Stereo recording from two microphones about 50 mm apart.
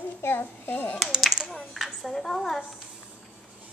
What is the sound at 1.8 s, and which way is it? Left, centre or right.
Speech, centre.